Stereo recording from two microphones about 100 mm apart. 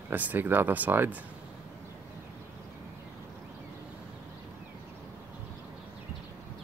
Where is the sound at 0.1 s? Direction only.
15° right (ahead or behind).